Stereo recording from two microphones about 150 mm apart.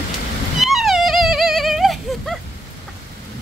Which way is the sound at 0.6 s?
Centre (ahead or behind).